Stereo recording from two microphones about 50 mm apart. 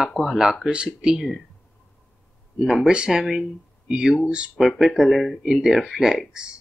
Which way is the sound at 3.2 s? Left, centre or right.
Centre.